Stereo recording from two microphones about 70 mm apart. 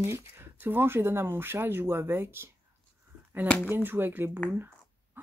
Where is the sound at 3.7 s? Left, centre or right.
Right.